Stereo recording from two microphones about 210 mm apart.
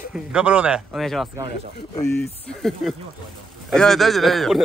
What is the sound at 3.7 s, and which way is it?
Speech, centre (ahead or behind).